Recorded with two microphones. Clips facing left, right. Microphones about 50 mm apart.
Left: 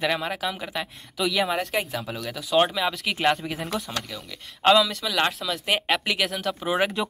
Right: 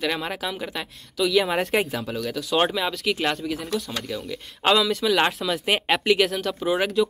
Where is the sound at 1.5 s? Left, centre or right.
Centre.